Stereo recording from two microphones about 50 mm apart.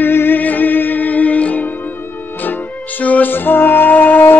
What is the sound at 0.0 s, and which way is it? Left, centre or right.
Music, left.